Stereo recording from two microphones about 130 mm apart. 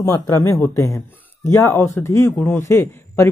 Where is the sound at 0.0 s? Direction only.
25° left (ahead or behind).